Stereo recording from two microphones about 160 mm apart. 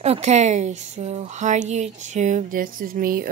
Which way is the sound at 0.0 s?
45° right (ahead or behind).